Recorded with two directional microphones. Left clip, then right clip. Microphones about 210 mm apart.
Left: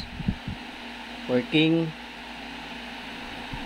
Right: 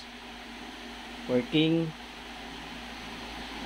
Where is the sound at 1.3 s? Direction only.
25° left (ahead or behind).